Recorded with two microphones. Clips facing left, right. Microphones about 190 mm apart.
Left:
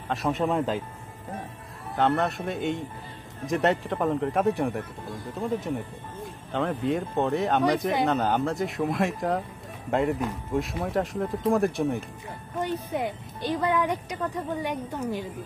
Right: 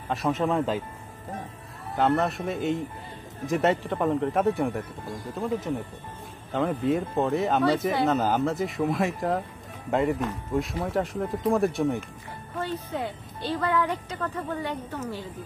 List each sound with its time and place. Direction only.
0.1 s speech: centre (ahead or behind)
2.0 s speech: centre (ahead or behind)
12.5 s speech: 15° left (ahead or behind)